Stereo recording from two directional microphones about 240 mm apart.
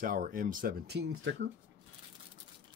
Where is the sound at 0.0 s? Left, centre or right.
Right.